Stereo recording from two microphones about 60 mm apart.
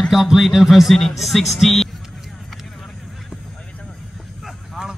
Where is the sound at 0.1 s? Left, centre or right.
Centre.